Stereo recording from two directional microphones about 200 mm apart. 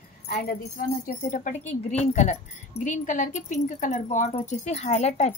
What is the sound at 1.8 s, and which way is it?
Speech, 35° left (ahead or behind).